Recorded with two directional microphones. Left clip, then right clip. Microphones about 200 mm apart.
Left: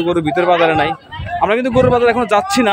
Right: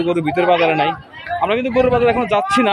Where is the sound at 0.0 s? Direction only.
10° left (ahead or behind).